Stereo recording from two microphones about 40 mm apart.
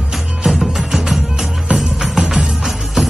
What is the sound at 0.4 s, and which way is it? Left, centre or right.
Music, centre.